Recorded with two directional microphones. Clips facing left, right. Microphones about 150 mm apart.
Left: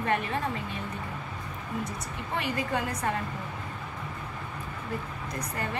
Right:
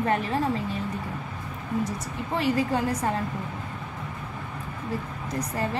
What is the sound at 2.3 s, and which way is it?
Speech, 30° right (ahead or behind).